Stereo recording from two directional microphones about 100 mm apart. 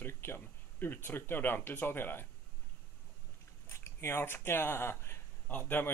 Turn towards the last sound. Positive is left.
turn(degrees=20)  # may be behind; listen again after turning